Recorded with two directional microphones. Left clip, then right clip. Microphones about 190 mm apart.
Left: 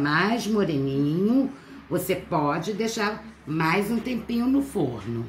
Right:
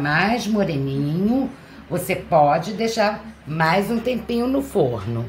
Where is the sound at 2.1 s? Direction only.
20° right (ahead or behind).